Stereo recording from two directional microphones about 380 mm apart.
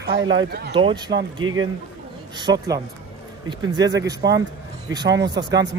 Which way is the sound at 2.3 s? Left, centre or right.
Centre.